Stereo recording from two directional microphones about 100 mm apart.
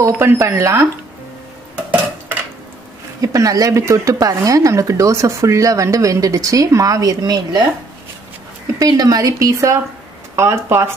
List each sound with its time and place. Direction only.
0.0 s speech: 25° right (ahead or behind)
3.2 s speech: 35° right (ahead or behind)
8.7 s speech: 40° right (ahead or behind)